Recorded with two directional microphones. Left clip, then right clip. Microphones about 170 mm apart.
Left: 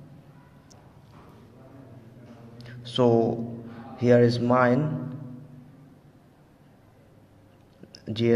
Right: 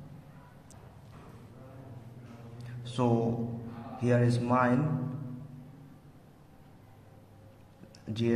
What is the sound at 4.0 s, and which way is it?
Speech, 35° left (ahead or behind).